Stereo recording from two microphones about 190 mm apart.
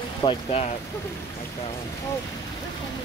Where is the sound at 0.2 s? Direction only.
30° left (ahead or behind).